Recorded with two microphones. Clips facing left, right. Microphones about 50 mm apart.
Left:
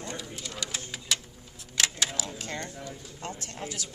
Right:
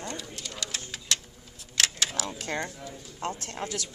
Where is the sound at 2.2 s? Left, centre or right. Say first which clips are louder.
Right 4 dB; right.